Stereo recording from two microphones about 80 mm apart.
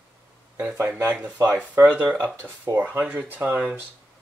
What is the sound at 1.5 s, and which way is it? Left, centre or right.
Speech, centre.